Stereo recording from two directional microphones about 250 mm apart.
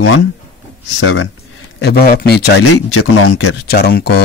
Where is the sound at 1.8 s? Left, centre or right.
Left.